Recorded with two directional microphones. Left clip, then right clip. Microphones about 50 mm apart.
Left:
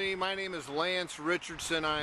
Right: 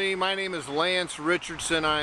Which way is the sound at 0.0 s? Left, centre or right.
Centre.